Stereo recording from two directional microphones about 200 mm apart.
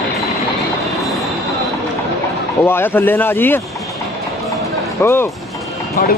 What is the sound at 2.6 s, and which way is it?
Speech, 10° left (ahead or behind).